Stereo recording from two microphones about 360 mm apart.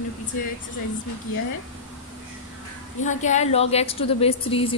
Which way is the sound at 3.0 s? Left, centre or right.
Centre.